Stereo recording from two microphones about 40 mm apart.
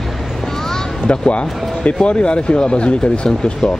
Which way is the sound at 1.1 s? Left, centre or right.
Left.